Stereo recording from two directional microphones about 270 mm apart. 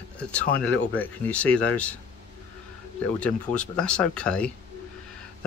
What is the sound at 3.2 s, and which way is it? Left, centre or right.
Speech, centre.